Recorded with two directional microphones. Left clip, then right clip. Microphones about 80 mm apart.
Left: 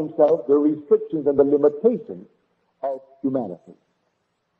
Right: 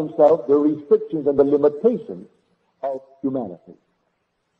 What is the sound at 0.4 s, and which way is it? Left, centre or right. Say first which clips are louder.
A man's voice: right 1 dB; right.